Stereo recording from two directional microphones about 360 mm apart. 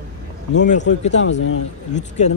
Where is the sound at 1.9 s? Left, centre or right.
Centre.